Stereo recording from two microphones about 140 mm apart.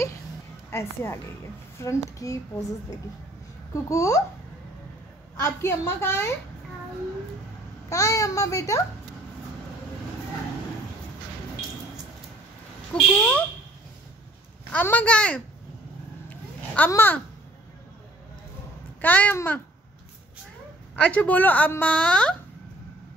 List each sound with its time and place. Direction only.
0.7 s a child's voice: 20° left (ahead or behind)
3.7 s a child's voice: 20° left (ahead or behind)
5.4 s a woman's voice: 20° left (ahead or behind)
7.9 s a child's voice: 20° left (ahead or behind)
12.9 s speech: centre (ahead or behind)
14.7 s a woman's voice: 10° left (ahead or behind)
16.3 s a sound: 10° left (ahead or behind)
18.9 s a woman's voice: 10° left (ahead or behind)
20.9 s a woman's voice: 10° left (ahead or behind)